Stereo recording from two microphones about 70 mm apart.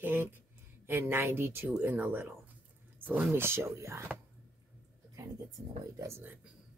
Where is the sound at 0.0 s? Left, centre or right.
Right.